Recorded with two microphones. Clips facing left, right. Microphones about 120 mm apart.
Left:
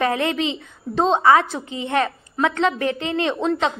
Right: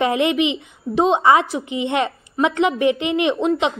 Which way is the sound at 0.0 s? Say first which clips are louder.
Right 3 dB; 15° right (ahead or behind).